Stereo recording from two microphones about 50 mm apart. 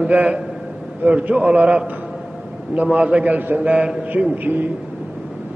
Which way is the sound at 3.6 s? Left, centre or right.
Centre.